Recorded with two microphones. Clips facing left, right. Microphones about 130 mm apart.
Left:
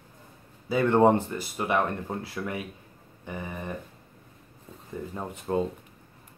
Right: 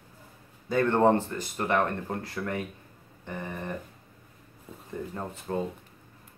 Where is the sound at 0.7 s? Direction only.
10° left (ahead or behind).